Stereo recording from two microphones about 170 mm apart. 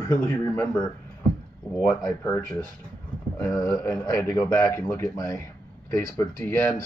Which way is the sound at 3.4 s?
20° left (ahead or behind).